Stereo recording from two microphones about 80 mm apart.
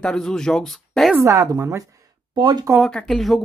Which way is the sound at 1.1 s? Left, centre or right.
Right.